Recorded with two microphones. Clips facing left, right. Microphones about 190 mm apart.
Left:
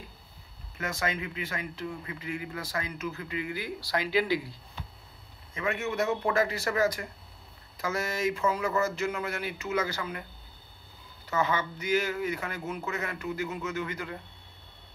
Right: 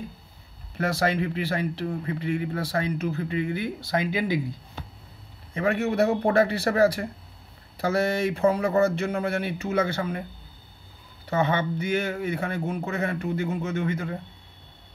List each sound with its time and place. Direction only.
0.7 s speech: 35° right (ahead or behind); by 4.4 s 20° right (ahead or behind)
5.5 s speech: 35° right (ahead or behind)
8.0 s speech: 60° right (ahead or behind)
8.3 s speech: 30° right (ahead or behind)
11.2 s speech: 30° right (ahead or behind)